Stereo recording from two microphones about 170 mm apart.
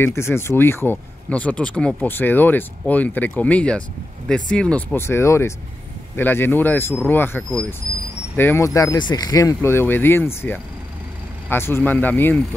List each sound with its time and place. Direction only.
0.0 s speech: 15° left (ahead or behind)